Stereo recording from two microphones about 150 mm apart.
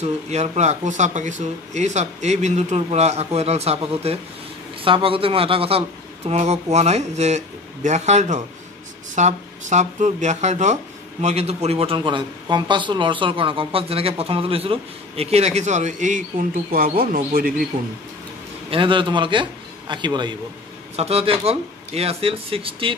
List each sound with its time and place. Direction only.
0.0 s speech: 50° right (ahead or behind); by 17.5 s 70° right (ahead or behind)
18.7 s speech: 35° right (ahead or behind)
20.9 s speech: 45° right (ahead or behind)